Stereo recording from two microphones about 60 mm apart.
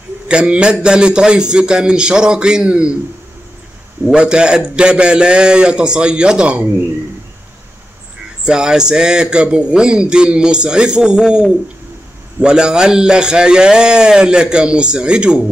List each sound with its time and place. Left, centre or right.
0.3 s a man's voice: centre
4.1 s a man's voice: centre
8.5 s a man's voice: centre